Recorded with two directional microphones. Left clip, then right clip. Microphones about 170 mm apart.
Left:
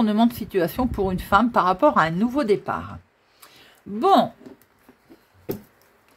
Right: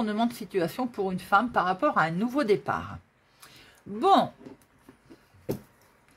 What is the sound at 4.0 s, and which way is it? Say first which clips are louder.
Speech: left 4 dB; 10° left (ahead or behind).